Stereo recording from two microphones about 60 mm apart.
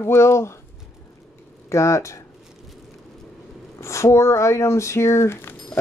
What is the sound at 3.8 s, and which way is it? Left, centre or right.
Speech, left.